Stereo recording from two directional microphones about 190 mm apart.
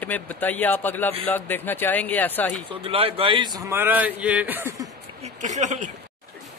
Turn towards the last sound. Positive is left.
turn(degrees=-40)  # may be behind; listen again after turning